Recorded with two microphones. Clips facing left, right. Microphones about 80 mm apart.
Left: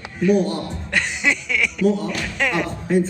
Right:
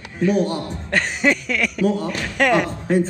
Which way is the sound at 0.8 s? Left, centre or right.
Right.